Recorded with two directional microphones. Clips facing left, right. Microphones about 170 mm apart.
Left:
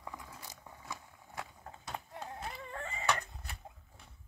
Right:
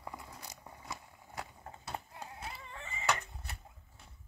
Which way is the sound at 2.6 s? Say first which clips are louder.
Left 5 dB; 55° left (ahead or behind).